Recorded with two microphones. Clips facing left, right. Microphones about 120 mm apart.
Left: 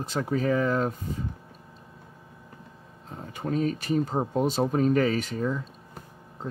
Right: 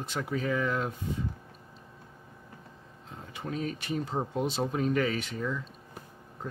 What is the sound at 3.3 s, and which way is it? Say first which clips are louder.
Speech: left 7 dB; 40° left (ahead or behind).